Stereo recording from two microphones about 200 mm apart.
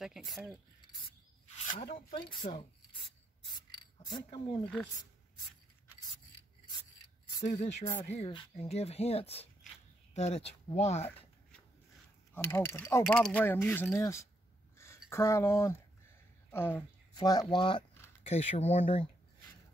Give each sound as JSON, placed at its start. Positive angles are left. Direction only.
{"t": 0.0, "sound": "speech", "side_deg": 0}
{"t": 1.7, "sound": "speech", "side_deg": 40}
{"t": 2.1, "sound": "speech", "side_deg": 25}
{"t": 3.5, "sound": "a sound", "side_deg": 20}
{"t": 7.4, "sound": "speech", "side_deg": 35}
{"t": 12.4, "sound": "speech", "side_deg": 15}